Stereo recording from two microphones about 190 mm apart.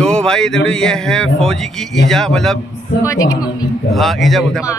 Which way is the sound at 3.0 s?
20° left (ahead or behind).